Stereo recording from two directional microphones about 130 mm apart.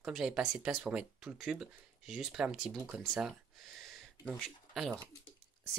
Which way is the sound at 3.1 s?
Centre (ahead or behind).